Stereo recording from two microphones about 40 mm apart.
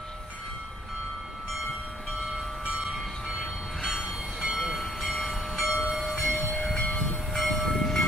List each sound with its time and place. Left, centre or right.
2.8 s train: centre
4.4 s train: centre
6.7 s train: left
7.0 s train: centre